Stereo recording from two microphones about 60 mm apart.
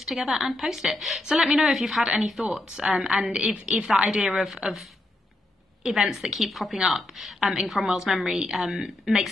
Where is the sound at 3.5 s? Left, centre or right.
Centre.